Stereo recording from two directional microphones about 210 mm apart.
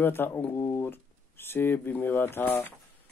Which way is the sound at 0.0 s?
10° left (ahead or behind).